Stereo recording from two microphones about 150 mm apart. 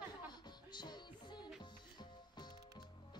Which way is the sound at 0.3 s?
30° left (ahead or behind).